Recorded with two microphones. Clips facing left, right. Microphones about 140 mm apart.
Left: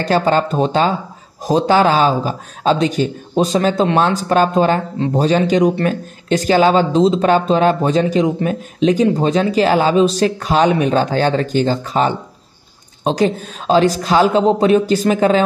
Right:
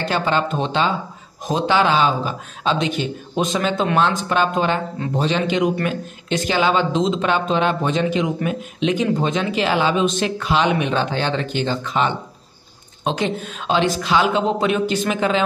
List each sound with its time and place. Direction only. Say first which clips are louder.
0.0 s speech: left 5 dB; 40° left (ahead or behind)